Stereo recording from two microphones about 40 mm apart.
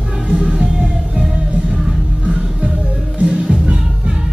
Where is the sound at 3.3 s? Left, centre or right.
Centre.